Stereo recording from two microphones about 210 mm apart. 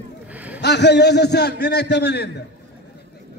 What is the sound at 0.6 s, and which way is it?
A man's voice, 55° left (ahead or behind).